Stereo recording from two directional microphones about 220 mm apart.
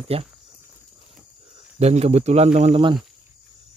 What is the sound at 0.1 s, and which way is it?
Speech, 25° right (ahead or behind).